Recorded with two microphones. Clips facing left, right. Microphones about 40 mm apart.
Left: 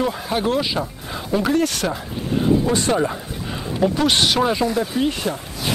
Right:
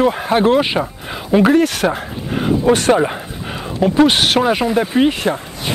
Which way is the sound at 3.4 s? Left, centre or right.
Right.